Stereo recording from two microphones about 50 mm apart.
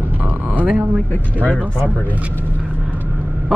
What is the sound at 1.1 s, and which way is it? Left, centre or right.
Speech, left.